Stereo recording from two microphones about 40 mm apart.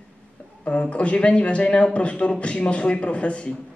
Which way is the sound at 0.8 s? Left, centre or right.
Left.